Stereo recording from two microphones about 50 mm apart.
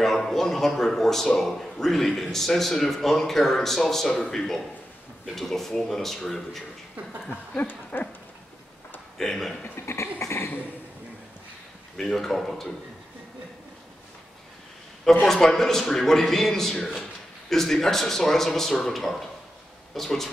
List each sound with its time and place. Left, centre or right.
0.0 s a man's voice: centre
7.2 s a sound: left
9.2 s a man's voice: centre
9.8 s a sound: left
12.0 s a man's voice: centre
15.2 s a man's voice: centre